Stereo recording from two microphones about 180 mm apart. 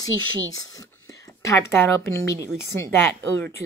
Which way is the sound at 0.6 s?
20° left (ahead or behind).